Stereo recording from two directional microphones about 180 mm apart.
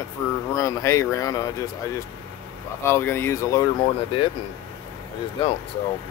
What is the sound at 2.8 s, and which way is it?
Speech, 15° left (ahead or behind).